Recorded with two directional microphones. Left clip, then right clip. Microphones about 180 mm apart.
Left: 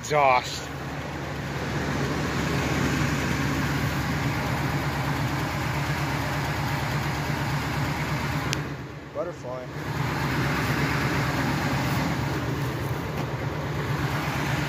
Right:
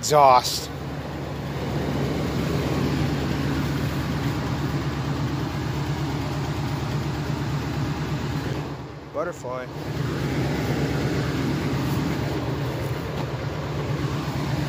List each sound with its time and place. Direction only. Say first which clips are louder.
0.1 s speech: right 5 dB; 25° right (ahead or behind)